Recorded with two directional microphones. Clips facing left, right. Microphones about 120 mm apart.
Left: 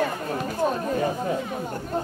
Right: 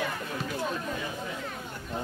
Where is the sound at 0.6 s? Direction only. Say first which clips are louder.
Left 9 dB; 45° left (ahead or behind).